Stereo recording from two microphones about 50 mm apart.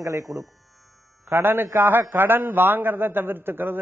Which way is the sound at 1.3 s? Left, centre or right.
Right.